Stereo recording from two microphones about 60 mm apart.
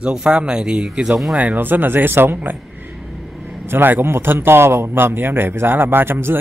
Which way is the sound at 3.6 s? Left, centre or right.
Right.